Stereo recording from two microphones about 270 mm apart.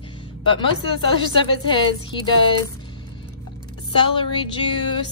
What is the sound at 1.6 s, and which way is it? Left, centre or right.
A woman's voice, centre.